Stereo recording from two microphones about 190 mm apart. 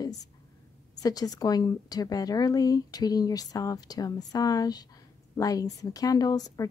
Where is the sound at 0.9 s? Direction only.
20° left (ahead or behind).